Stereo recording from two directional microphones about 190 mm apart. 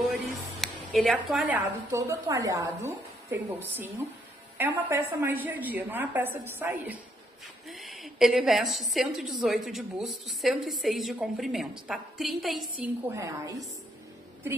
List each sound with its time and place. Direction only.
0.1 s a sound: centre (ahead or behind)
1.9 s a woman's voice: 15° right (ahead or behind); by 12.9 s centre (ahead or behind)
13.1 s a woman's voice: 15° right (ahead or behind)